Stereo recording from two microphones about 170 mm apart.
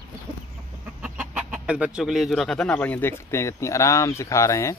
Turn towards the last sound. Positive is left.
turn(degrees=15)  # may be behind; listen again after turning